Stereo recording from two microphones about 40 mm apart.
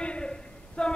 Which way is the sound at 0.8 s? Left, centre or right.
Left.